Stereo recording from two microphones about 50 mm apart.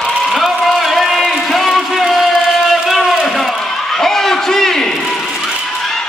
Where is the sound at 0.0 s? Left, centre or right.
Centre.